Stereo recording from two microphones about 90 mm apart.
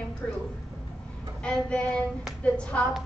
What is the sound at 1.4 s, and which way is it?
A woman's voice, 10° left (ahead or behind).